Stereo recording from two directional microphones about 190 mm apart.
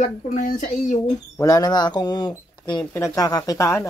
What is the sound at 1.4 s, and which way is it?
Speech, 20° left (ahead or behind).